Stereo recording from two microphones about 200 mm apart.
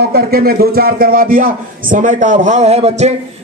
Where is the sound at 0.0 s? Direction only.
50° right (ahead or behind).